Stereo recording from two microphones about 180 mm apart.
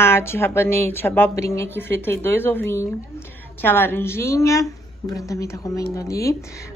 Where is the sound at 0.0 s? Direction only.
15° left (ahead or behind).